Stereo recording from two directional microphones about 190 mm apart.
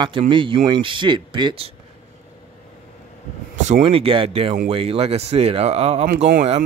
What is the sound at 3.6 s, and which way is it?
Speech, 35° right (ahead or behind).